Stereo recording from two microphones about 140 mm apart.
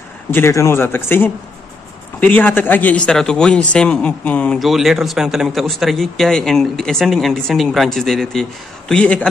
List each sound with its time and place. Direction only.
0.3 s a man's voice: 20° left (ahead or behind)